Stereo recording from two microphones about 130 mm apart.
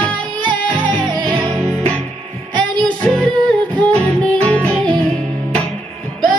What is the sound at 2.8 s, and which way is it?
Music, 5° left (ahead or behind).